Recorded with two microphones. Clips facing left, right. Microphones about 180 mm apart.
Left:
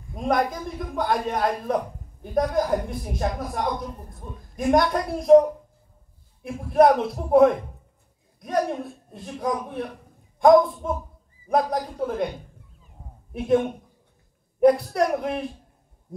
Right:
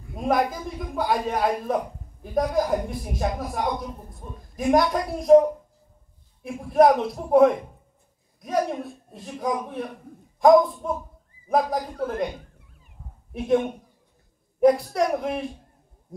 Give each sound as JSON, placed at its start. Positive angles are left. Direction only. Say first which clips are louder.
{"t": 0.1, "sound": "a man's voice", "louder": "even", "side_deg": -5}
{"t": 12.6, "sound": "a sound", "louder": "left 2 dB", "side_deg": -70}
{"t": 13.3, "sound": "a man's voice", "louder": "left 1 dB", "side_deg": 0}